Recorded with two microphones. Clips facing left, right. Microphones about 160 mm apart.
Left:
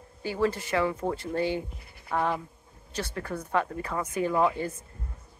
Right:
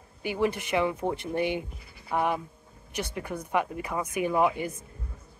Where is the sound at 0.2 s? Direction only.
15° right (ahead or behind).